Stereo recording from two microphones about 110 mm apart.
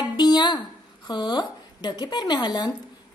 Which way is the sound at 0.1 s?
40° left (ahead or behind).